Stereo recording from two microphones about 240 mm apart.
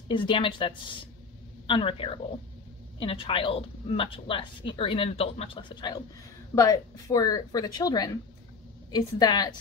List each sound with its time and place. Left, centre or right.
0.1 s a woman's voice: left